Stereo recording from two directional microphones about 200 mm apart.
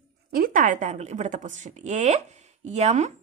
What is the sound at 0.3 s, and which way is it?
A woman's voice, 45° right (ahead or behind).